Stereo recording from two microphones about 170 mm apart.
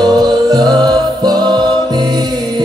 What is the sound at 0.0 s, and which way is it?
Music, 25° right (ahead or behind).